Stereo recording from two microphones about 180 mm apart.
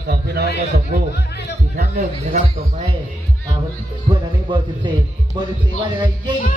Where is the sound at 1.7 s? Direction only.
55° right (ahead or behind).